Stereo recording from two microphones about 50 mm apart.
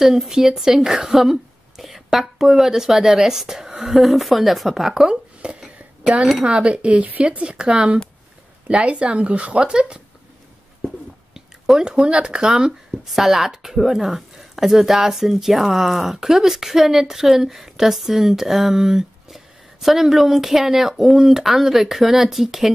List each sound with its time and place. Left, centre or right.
0.0 s a woman's voice: centre
11.3 s speech: centre
13.0 s a woman's voice: centre